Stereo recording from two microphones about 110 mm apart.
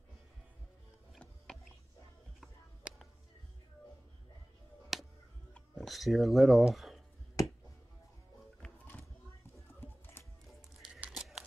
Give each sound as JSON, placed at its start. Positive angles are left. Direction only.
{"t": 1.2, "sound": "a sound", "side_deg": 5}
{"t": 4.9, "sound": "music", "side_deg": 0}
{"t": 5.8, "sound": "speech", "side_deg": 0}
{"t": 8.6, "sound": "music", "side_deg": 15}
{"t": 10.2, "sound": "music", "side_deg": 20}
{"t": 10.8, "sound": "crumpling", "side_deg": -5}